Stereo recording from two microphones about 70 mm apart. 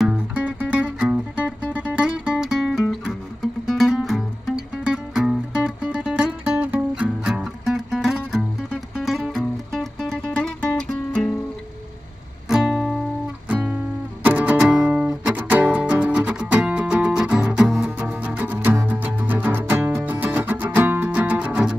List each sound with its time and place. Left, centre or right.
0.5 s music: centre
4.6 s music: centre
7.6 s music: centre
10.3 s music: centre
12.4 s music: centre
13.5 s music: centre
14.6 s music: centre